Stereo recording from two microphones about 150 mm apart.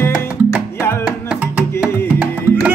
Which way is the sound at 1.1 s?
5° right (ahead or behind).